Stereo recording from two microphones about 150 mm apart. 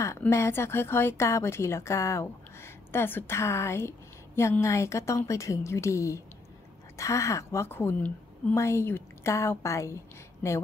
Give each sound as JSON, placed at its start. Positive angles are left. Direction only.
{"t": 0.2, "sound": "a woman's voice", "side_deg": 15}